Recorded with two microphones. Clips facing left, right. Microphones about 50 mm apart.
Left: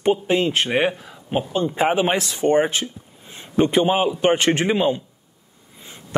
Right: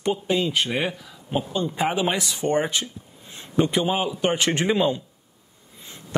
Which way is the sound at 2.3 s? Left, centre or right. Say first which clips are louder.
Left 5 dB; left.